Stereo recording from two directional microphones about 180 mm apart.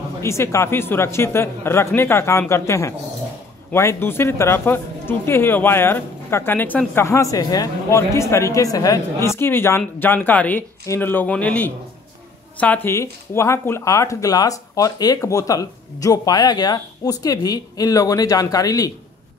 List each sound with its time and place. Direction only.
0.2 s speech: 15° left (ahead or behind)